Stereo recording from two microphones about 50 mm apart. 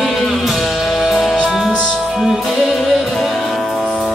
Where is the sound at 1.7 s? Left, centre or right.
Centre.